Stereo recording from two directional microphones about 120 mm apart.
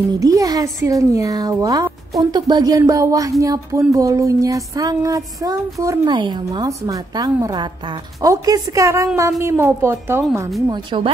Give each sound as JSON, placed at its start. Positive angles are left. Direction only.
{"t": 0.2, "sound": "a woman's voice", "side_deg": -30}
{"t": 6.1, "sound": "a woman's voice", "side_deg": -40}
{"t": 10.7, "sound": "a woman's voice", "side_deg": -40}